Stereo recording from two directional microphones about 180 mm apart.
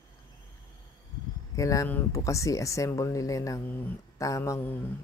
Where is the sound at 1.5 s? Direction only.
20° left (ahead or behind).